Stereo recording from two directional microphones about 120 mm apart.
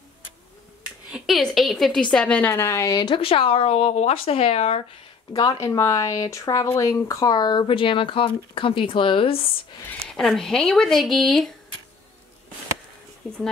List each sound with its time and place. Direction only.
1.1 s a woman's voice: centre (ahead or behind); by 3.2 s 30° left (ahead or behind)
3.2 s speech: 50° left (ahead or behind)
5.3 s speech: 30° left (ahead or behind); by 9.5 s 50° left (ahead or behind)
10.0 s speech: 5° left (ahead or behind)
13.2 s speech: 5° left (ahead or behind)